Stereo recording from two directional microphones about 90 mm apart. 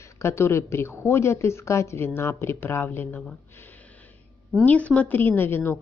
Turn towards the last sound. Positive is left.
turn(degrees=25)  # may be behind; listen again after turning